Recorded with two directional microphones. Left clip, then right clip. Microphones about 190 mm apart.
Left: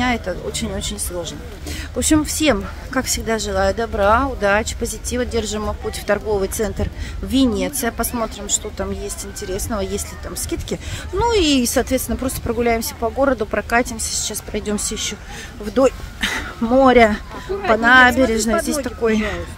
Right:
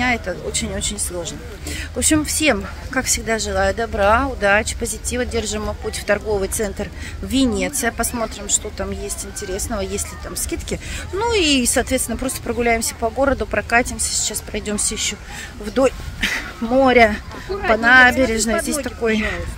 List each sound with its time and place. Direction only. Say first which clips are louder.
0.0 s speech: right 1 dB; 15° left (ahead or behind)